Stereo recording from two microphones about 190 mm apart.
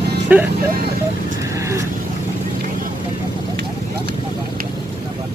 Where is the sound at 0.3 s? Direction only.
10° right (ahead or behind).